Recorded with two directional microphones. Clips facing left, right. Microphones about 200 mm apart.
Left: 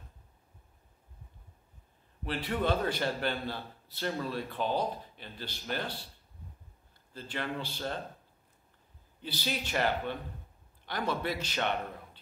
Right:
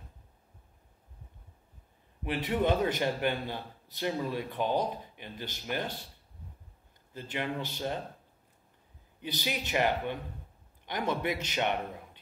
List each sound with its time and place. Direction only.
2.2 s a man's voice: 15° right (ahead or behind)
7.2 s a man's voice: 15° right (ahead or behind)
9.2 s a man's voice: 15° right (ahead or behind)